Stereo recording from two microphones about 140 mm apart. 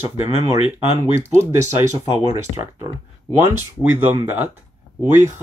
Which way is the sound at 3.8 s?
15° right (ahead or behind).